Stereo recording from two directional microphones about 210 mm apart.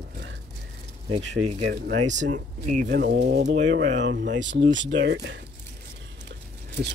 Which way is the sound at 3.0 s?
55° right (ahead or behind).